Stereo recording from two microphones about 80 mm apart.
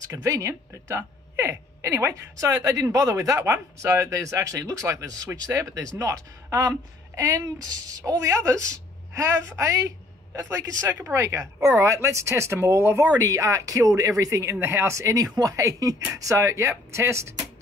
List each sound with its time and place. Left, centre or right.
0.0 s speech: right
2.3 s speech: right
3.2 s speech: right
8.5 s a woman's voice: right
10.9 s speech: right
11.1 s speech: right
13.0 s speech: right